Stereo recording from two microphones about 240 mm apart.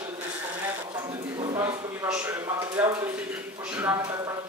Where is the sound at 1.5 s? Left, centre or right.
Centre.